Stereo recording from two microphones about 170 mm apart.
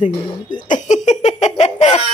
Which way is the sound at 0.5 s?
50° left (ahead or behind).